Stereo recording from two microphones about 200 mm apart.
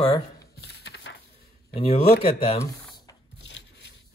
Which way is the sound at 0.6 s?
55° left (ahead or behind).